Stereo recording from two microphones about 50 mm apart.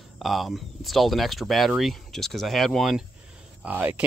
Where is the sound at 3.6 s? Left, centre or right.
Right.